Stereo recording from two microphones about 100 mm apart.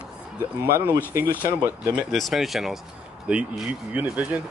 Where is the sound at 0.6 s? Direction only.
25° right (ahead or behind).